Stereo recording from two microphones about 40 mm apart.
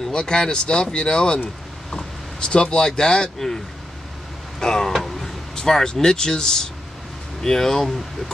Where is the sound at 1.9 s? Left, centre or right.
Centre.